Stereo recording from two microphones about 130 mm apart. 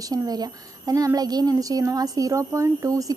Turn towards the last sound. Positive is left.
turn(degrees=-25)  # may be behind; listen again after turning